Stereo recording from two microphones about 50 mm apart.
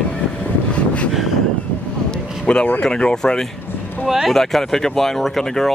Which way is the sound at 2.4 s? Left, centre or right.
Centre.